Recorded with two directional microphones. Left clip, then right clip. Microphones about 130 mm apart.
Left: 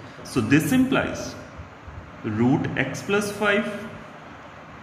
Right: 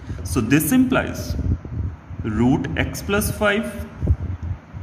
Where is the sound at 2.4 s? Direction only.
60° right (ahead or behind).